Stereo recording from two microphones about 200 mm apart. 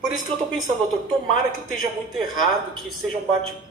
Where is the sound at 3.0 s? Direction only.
5° right (ahead or behind).